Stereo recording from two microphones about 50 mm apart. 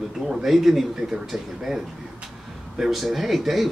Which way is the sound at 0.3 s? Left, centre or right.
Centre.